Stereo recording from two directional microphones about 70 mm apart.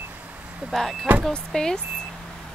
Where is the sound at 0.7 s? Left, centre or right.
Centre.